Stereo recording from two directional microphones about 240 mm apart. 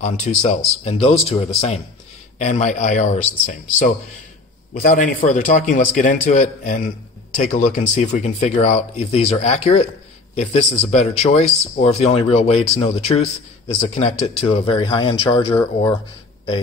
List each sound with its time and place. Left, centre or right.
0.4 s a man's voice: left
4.8 s a man's voice: left; by 16.0 s centre